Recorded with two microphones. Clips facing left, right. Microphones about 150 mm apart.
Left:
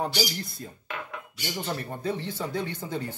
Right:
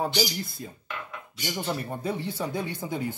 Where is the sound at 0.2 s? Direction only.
5° right (ahead or behind).